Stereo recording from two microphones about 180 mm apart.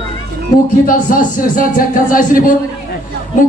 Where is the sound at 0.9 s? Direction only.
50° left (ahead or behind).